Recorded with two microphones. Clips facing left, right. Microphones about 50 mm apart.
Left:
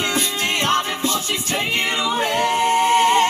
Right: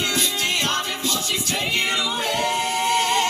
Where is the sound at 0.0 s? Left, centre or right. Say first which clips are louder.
Left 2 dB; left.